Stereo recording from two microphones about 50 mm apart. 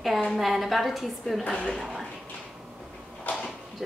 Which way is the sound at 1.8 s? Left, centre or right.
Centre.